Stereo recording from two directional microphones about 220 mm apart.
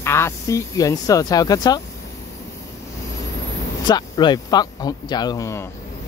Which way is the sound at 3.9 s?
20° left (ahead or behind).